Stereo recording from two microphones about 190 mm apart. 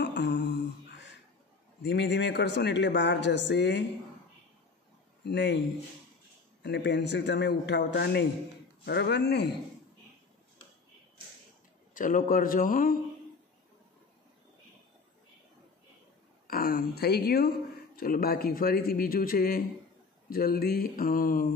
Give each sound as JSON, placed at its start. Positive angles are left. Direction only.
{"t": 0.0, "sound": "mantra", "side_deg": 65}
{"t": 1.8, "sound": "a man's voice", "side_deg": 65}
{"t": 5.2, "sound": "a man's voice", "side_deg": 65}
{"t": 6.6, "sound": "a man's voice", "side_deg": 65}
{"t": 11.9, "sound": "speech", "side_deg": 45}
{"t": 16.4, "sound": "speech", "side_deg": 50}